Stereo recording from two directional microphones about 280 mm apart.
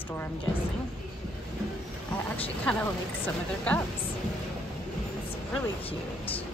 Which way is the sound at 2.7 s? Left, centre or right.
Centre.